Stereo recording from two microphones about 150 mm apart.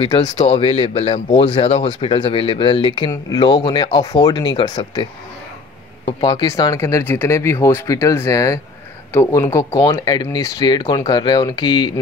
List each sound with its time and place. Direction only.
0.0 s speech: 30° left (ahead or behind)
6.0 s speech: 25° left (ahead or behind)